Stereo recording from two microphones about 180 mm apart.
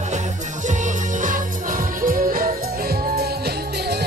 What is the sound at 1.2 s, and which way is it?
Music, 50° right (ahead or behind).